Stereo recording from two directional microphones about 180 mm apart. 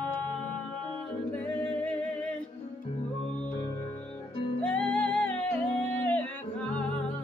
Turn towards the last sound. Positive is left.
turn(degrees=10)  # may be behind; listen again after turning